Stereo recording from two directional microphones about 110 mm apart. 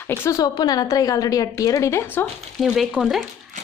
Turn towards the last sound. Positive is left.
turn(degrees=-5)  # may be behind; listen again after turning